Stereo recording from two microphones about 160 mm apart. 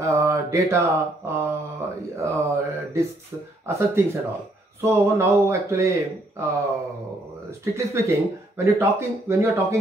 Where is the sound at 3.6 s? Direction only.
15° right (ahead or behind).